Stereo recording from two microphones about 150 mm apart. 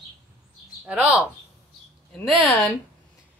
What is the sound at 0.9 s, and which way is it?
Speech, 10° right (ahead or behind).